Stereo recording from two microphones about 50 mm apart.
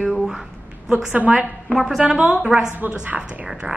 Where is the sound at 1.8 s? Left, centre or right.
Centre.